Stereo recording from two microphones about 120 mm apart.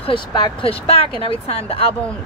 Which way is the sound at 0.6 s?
55° left (ahead or behind).